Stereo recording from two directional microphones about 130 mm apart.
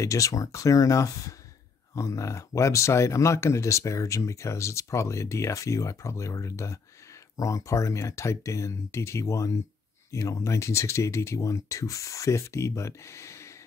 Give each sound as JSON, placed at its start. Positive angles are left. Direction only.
{"t": 0.0, "sound": "speech", "side_deg": 25}